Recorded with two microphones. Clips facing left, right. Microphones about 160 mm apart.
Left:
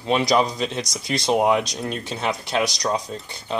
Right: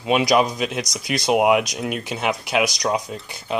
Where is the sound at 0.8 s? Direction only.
20° right (ahead or behind).